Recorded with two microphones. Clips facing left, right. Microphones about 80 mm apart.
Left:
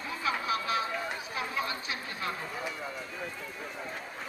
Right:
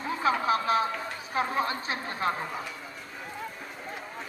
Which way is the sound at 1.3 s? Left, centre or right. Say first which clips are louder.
Right 8 dB; right.